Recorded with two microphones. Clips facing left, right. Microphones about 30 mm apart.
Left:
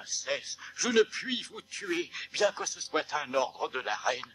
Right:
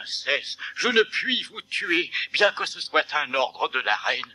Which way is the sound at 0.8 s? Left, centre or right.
Right.